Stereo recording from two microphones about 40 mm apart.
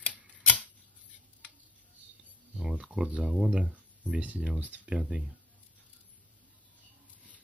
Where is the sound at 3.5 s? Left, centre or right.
Right.